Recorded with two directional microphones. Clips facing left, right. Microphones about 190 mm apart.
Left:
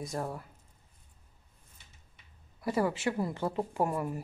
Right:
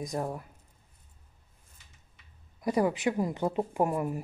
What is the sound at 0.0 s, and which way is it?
Speech, 15° right (ahead or behind).